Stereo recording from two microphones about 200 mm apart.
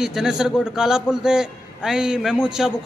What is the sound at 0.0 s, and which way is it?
A man's voice, 5° right (ahead or behind).